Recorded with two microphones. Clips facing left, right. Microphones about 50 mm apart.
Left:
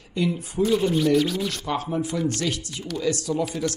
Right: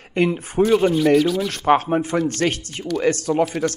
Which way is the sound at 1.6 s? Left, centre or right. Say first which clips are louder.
Right 13 dB; right.